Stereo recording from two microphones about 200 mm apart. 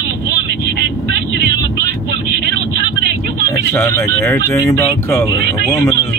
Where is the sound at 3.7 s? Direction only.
10° left (ahead or behind).